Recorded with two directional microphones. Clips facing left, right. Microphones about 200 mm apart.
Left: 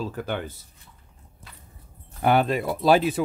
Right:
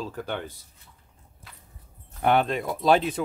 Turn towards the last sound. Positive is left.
turn(degrees=5)  # may be behind; listen again after turning